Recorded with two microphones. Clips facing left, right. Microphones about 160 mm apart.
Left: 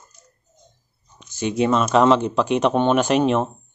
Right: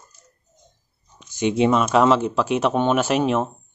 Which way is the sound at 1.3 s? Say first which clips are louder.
Right 2 dB; 20° right (ahead or behind).